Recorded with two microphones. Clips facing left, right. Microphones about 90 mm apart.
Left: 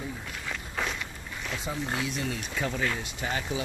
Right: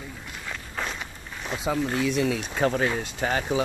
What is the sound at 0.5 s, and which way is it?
Walk, 5° right (ahead or behind).